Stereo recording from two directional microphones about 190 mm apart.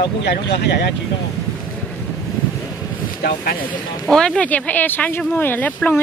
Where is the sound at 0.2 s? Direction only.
60° left (ahead or behind).